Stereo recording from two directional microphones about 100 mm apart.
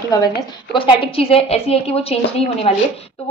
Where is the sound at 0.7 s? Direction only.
60° left (ahead or behind); by 2.7 s 90° left.